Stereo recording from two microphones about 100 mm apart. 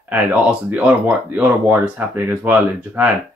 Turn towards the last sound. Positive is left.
turn(degrees=-15)  # may be behind; listen again after turning